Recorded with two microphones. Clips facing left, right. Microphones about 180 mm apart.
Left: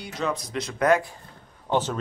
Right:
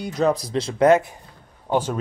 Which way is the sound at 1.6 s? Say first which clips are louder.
Right 2 dB; 10° right (ahead or behind).